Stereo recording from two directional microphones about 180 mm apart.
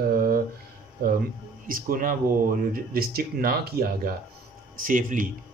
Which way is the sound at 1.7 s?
50° right (ahead or behind).